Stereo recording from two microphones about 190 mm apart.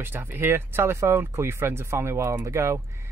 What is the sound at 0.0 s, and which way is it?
Speech, 10° right (ahead or behind).